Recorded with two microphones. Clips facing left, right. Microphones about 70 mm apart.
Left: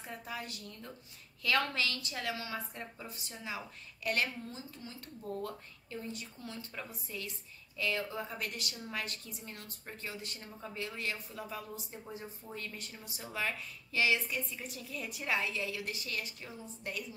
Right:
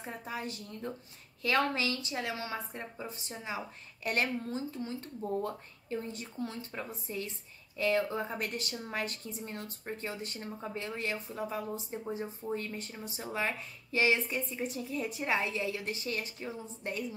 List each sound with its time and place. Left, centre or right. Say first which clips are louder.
0.0 s speech: right 4 dB; right